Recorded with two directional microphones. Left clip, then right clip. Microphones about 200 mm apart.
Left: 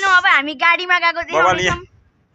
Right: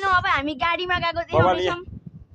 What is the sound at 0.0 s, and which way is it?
A woman's voice, 45° right (ahead or behind).